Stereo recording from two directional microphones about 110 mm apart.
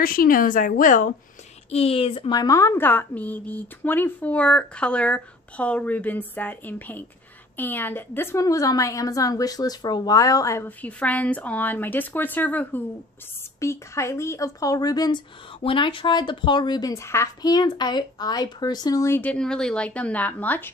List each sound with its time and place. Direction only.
1.7 s speech: 65° left (ahead or behind)
2.3 s a woman's voice: 30° left (ahead or behind)
10.8 s a woman's voice: 15° left (ahead or behind)
19.3 s a woman's voice: 5° left (ahead or behind)